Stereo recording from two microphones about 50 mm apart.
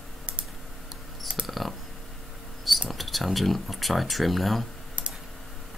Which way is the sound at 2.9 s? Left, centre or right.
Centre.